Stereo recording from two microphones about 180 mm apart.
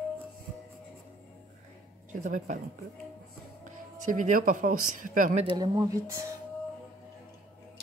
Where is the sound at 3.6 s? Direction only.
45° right (ahead or behind).